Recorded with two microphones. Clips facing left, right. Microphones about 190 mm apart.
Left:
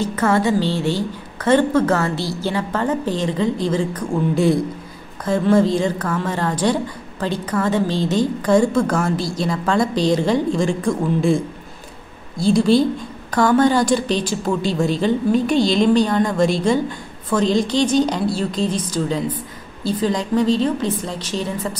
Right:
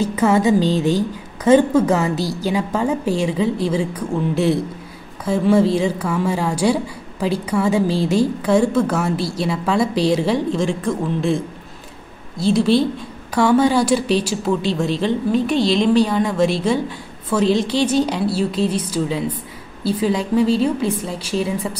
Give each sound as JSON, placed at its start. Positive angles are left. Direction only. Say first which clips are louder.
{"t": 0.0, "sound": "a woman's voice", "louder": "right 2 dB", "side_deg": -15}
{"t": 12.4, "sound": "a woman's voice", "louder": "left 1 dB", "side_deg": 0}